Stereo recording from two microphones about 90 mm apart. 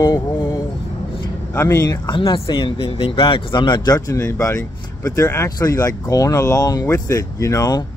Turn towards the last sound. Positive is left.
turn(degrees=45)  # may be behind; listen again after turning